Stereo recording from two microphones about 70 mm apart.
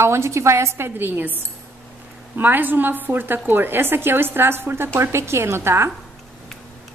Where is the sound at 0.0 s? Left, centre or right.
Right.